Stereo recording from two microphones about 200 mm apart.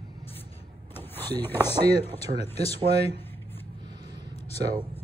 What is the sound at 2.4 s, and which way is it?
Speech, 30° left (ahead or behind).